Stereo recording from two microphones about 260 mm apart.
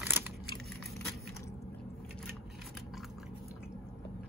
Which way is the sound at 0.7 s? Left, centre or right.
Centre.